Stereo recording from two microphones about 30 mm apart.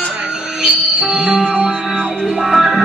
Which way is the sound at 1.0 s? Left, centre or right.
Right.